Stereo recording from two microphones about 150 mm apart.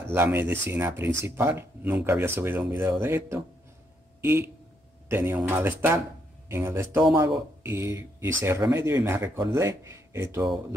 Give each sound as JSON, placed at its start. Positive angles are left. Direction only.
{"t": 0.1, "sound": "speech", "side_deg": -15}
{"t": 5.0, "sound": "speech", "side_deg": -15}